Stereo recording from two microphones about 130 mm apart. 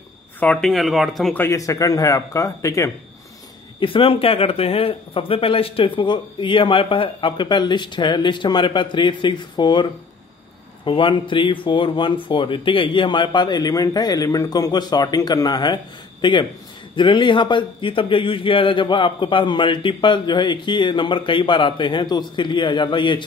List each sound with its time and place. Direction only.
0.4 s speech: 5° left (ahead or behind)
1.3 s speech: 20° left (ahead or behind)
3.8 s a man's voice: 45° left (ahead or behind)
10.9 s a man's voice: 40° left (ahead or behind)